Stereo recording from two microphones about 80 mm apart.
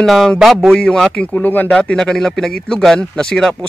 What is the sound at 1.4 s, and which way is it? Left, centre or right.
Speech, left.